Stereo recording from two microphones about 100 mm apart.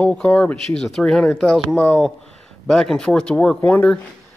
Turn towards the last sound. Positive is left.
turn(degrees=15)  # may be behind; listen again after turning